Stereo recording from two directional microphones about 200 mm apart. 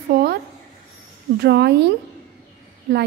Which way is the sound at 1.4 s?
55° right (ahead or behind).